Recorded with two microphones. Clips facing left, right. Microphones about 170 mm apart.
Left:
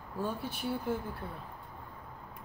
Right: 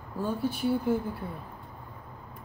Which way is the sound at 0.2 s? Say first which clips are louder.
Right 7 dB; centre (ahead or behind).